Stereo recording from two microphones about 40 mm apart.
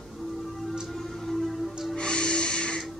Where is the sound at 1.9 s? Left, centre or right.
Left.